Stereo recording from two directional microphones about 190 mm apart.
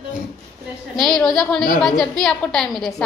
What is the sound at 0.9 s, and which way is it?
A woman's voice, centre (ahead or behind).